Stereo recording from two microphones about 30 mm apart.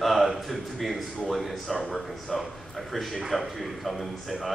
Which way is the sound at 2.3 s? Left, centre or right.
Centre.